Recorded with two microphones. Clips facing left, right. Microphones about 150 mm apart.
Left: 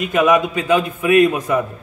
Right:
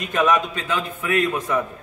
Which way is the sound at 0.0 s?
10° left (ahead or behind).